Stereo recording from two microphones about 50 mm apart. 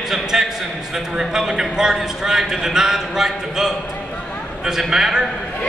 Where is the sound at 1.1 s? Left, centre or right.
Centre.